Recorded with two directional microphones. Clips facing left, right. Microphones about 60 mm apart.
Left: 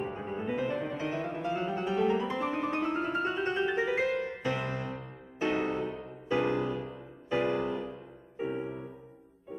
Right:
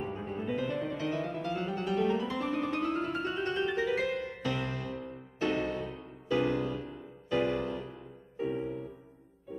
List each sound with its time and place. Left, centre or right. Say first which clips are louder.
0.2 s music: left 1 dB; left